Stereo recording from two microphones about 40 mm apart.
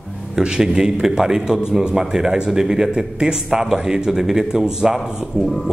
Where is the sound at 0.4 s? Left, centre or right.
Centre.